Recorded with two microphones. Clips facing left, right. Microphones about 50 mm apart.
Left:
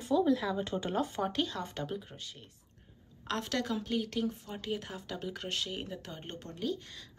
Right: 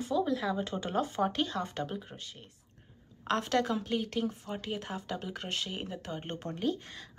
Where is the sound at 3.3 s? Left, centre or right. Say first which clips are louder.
Right 5 dB; centre.